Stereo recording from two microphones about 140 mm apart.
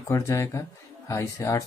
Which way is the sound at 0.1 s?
20° left (ahead or behind).